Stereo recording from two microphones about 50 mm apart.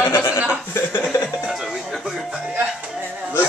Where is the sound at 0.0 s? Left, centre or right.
Left.